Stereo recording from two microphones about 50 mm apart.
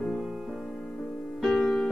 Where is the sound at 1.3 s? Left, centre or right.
Centre.